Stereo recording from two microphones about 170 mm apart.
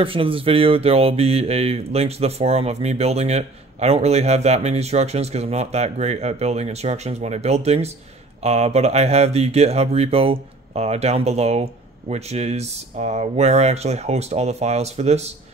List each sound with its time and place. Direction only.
0.0 s speech: 30° right (ahead or behind)